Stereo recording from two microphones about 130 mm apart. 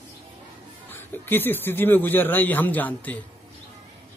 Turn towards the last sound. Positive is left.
turn(degrees=15)  # may be behind; listen again after turning